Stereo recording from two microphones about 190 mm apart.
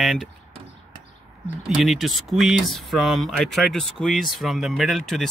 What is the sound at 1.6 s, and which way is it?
Speech, centre (ahead or behind).